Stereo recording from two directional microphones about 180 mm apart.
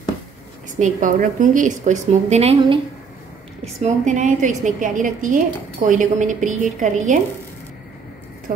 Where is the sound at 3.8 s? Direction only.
40° right (ahead or behind).